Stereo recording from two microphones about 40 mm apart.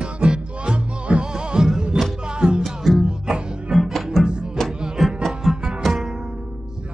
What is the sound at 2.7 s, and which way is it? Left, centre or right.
Music, centre.